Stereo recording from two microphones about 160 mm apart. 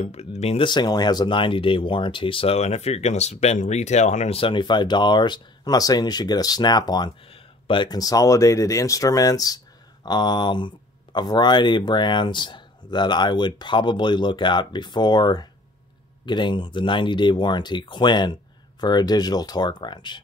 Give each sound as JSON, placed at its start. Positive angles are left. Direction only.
{"t": 0.0, "sound": "speech", "side_deg": 45}
{"t": 0.7, "sound": "speech", "side_deg": 25}
{"t": 4.4, "sound": "speech", "side_deg": 30}